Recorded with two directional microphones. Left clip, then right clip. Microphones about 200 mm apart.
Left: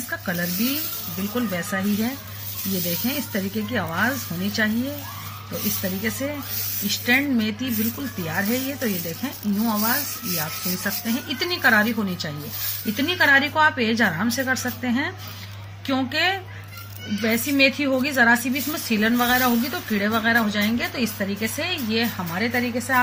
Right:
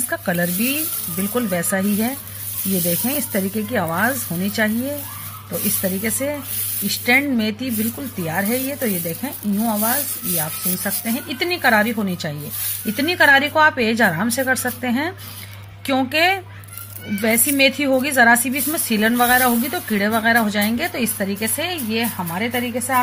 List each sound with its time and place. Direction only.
0.1 s a woman's voice: 45° right (ahead or behind)
9.7 s a woman's voice: 25° right (ahead or behind)